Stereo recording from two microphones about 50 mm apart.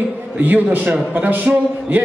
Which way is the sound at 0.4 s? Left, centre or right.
Right.